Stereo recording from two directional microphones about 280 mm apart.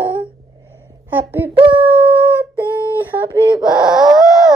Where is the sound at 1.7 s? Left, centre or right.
Centre.